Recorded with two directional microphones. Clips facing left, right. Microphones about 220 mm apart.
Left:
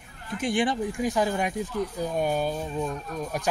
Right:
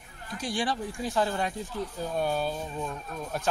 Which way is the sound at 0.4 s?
20° left (ahead or behind).